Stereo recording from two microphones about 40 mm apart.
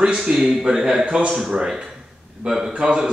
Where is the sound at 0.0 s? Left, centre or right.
Centre.